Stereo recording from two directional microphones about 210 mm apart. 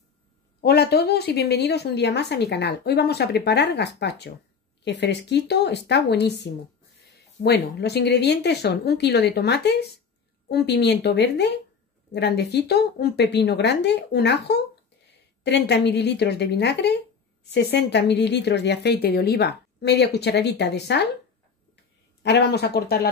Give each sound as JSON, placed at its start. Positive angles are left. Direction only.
{"t": 0.6, "sound": "a woman's voice", "side_deg": 50}
{"t": 22.2, "sound": "a woman's voice", "side_deg": 55}